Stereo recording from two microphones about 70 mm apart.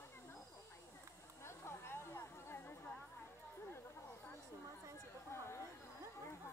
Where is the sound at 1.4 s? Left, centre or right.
Left.